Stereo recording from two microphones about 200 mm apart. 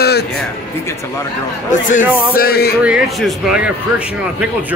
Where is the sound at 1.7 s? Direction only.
40° left (ahead or behind).